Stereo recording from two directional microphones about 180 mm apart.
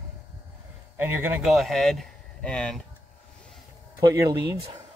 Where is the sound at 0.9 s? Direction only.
10° right (ahead or behind).